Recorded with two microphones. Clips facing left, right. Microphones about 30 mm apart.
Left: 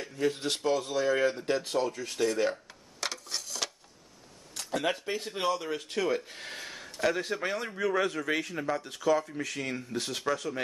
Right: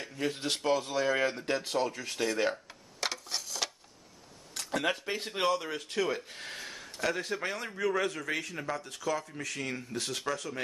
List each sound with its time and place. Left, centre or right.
0.0 s speech: centre
2.7 s a sound: centre
4.6 s speech: centre
5.7 s speech: centre